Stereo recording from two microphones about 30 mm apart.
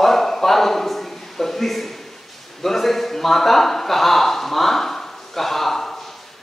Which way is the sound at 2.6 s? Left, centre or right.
Centre.